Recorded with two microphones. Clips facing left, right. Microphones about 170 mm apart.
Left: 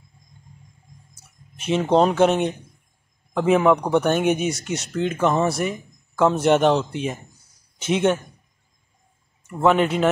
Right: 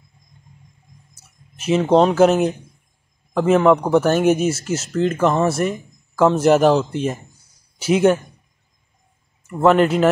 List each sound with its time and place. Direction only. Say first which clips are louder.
1.6 s speech: right 3 dB; 5° right (ahead or behind)
9.6 s speech: right 4 dB; centre (ahead or behind)